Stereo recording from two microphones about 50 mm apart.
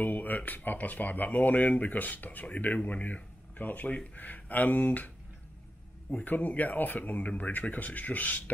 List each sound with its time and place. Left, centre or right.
0.0 s speech: left
6.2 s speech: left